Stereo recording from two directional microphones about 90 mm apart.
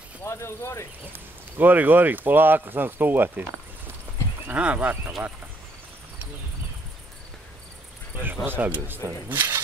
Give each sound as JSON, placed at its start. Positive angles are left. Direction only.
{"t": 0.2, "sound": "speech", "side_deg": 30}
{"t": 1.1, "sound": "speech", "side_deg": -20}
{"t": 8.5, "sound": "speech", "side_deg": -20}